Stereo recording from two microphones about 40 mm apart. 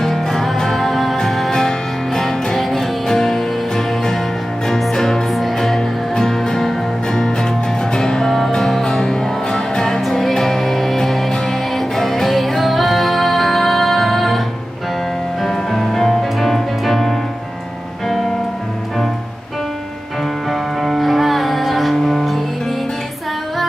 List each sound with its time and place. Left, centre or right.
0.0 s music: centre
15.5 s music: centre
20.8 s music: centre